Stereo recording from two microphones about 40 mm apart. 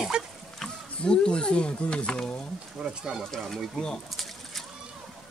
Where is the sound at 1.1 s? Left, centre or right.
Left.